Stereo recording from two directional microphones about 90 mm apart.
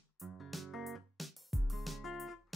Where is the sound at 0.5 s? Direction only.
Centre (ahead or behind).